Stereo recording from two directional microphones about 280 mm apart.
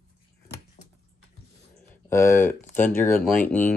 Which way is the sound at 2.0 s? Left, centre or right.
Centre.